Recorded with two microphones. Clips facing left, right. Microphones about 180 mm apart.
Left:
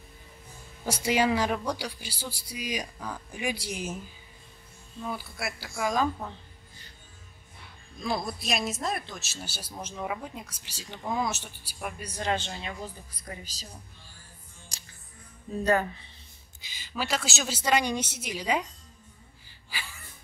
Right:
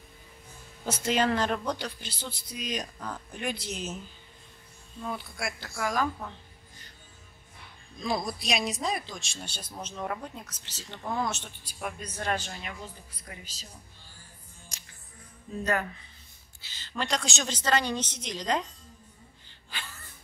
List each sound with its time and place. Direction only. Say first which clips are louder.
0.8 s speech: left 1 dB; 10° left (ahead or behind)
5.8 s speech: left 2 dB; 20° left (ahead or behind)
8.0 s speech: even; centre (ahead or behind); by 13.7 s 35° left (ahead or behind)
15.6 s speech: left 4 dB; 30° left (ahead or behind)
16.6 s speech: even; 10° left (ahead or behind)
19.4 s gasp: left 1 dB; 10° left (ahead or behind)